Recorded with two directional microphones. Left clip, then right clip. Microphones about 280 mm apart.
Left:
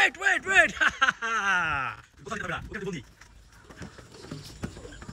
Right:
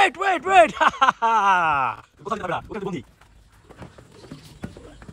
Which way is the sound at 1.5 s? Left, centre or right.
Centre.